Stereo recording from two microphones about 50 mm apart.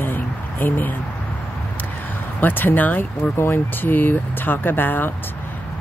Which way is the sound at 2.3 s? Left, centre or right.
Left.